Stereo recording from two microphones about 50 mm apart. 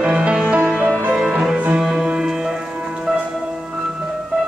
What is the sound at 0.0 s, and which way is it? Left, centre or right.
Music, right.